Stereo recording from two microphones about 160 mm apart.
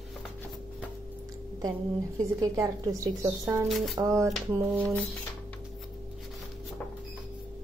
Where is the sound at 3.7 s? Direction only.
Centre (ahead or behind).